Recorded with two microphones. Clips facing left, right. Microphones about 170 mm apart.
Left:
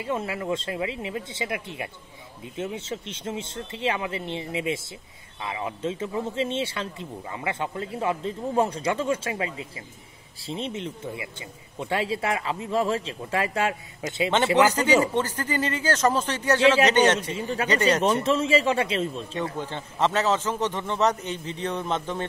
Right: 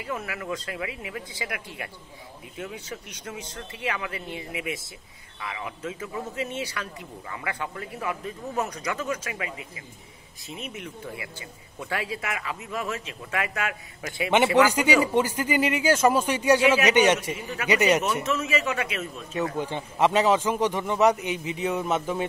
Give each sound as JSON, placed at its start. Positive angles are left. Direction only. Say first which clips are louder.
{"t": 0.0, "sound": "speech", "louder": "left 4 dB", "side_deg": 25}
{"t": 14.6, "sound": "a man's voice", "louder": "left 1 dB", "side_deg": -10}
{"t": 17.3, "sound": "speech", "louder": "left 4 dB", "side_deg": 30}
{"t": 17.6, "sound": "a man's voice", "louder": "right 2 dB", "side_deg": -10}
{"t": 18.2, "sound": "speech", "louder": "left 5 dB", "side_deg": 30}
{"t": 19.5, "sound": "a man's voice", "louder": "right 3 dB", "side_deg": -10}